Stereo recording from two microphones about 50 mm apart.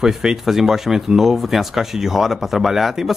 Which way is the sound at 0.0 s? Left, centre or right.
Centre.